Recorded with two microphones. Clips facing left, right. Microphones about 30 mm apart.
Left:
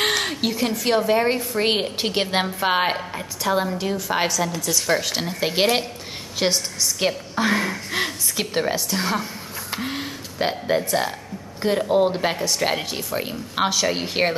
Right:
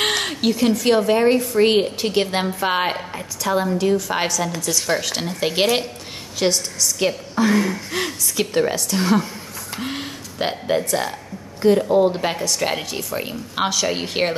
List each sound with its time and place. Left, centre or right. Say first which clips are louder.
0.0 s speech: right 2 dB; centre
6.4 s a woman's voice: right 2 dB; centre